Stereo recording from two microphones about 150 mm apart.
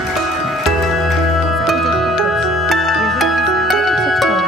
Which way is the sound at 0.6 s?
Centre (ahead or behind).